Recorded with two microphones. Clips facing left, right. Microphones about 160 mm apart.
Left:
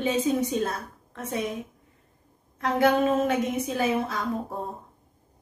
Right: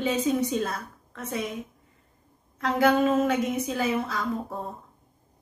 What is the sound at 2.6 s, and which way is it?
Speech, 25° left (ahead or behind).